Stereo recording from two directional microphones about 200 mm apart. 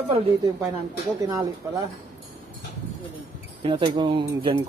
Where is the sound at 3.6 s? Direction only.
30° right (ahead or behind).